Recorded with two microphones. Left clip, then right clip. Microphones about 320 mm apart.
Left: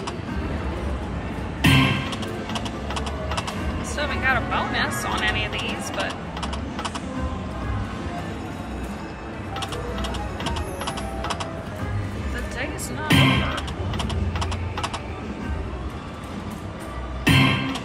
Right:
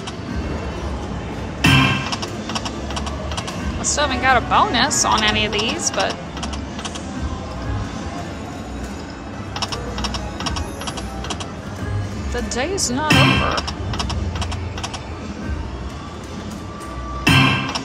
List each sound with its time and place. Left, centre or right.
1.6 s tick-tock: centre
2.5 s typing: centre
3.8 s speech: centre
13.1 s speech: centre
17.2 s music: centre